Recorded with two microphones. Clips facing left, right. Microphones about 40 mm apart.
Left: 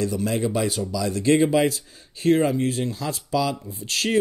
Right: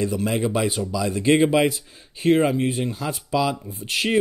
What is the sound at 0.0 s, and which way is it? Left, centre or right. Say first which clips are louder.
Speech: right 1 dB; right.